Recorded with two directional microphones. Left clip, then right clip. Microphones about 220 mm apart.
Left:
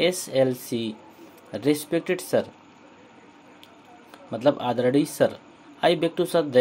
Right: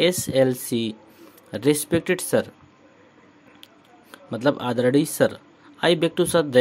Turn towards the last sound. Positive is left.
turn(degrees=-40)  # may be behind; listen again after turning